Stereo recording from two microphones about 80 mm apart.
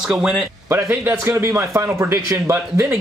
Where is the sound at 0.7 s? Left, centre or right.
Right.